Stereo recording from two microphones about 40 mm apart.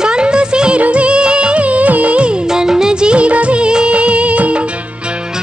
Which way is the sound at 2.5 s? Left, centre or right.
Centre.